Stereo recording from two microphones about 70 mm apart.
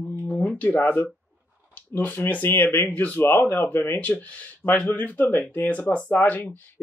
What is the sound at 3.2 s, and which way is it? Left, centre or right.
Speech, left.